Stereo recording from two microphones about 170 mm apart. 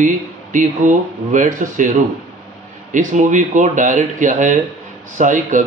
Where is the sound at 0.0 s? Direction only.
50° right (ahead or behind).